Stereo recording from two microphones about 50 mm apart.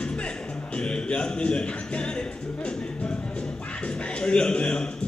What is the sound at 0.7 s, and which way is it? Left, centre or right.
Speech, centre.